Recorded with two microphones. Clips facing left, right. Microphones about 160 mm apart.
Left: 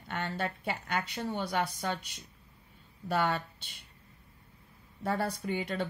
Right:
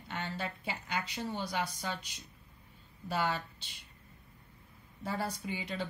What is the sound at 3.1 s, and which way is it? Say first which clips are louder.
Speech: left 4 dB; 60° left (ahead or behind).